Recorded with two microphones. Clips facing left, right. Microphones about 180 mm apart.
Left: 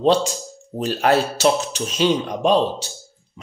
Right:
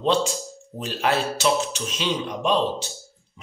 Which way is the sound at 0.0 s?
40° left (ahead or behind).